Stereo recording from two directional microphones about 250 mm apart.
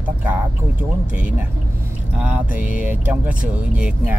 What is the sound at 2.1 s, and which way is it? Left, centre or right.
Speech, centre.